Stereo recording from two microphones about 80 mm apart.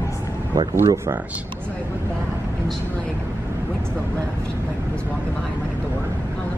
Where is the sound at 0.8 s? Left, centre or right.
Right.